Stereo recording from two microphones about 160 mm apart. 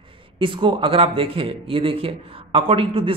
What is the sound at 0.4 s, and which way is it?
A man's voice, 30° right (ahead or behind).